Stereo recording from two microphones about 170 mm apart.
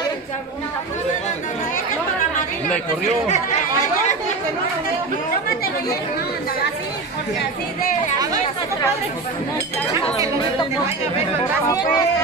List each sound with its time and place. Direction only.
11.6 s speech: 20° left (ahead or behind)